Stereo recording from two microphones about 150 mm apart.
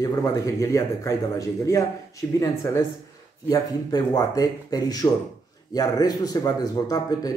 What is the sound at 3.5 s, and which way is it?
A man's voice, 25° left (ahead or behind).